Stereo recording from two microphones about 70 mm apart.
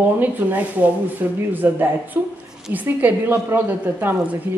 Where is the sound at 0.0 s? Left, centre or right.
Right.